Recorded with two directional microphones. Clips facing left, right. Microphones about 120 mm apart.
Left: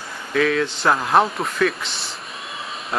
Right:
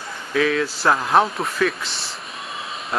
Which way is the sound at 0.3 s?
Centre (ahead or behind).